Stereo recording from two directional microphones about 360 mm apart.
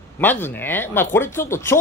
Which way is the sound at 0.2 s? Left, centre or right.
Centre.